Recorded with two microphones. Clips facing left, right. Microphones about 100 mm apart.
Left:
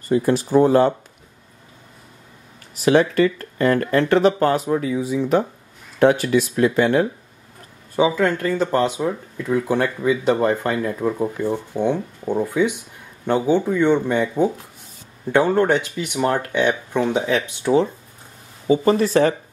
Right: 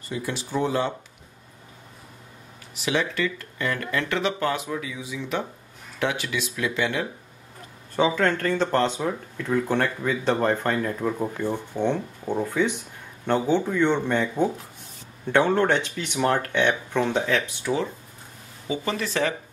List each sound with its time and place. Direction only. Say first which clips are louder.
0.1 s speech: left 12 dB; 45° left (ahead or behind)
2.7 s speech: left 10 dB; 45° left (ahead or behind)
7.9 s speech: left 4 dB; 10° left (ahead or behind)
17.7 s speech: left 11 dB; 35° left (ahead or behind)